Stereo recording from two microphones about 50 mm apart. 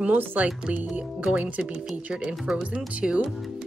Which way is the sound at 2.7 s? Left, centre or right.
Right.